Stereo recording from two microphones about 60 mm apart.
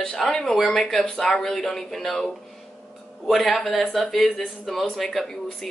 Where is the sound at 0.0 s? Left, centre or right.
Centre.